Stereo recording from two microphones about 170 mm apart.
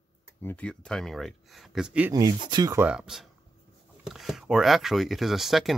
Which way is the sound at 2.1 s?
20° right (ahead or behind).